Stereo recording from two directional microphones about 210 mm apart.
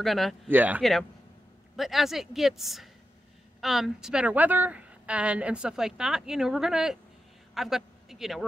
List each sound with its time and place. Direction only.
0.0 s a woman's voice: centre (ahead or behind)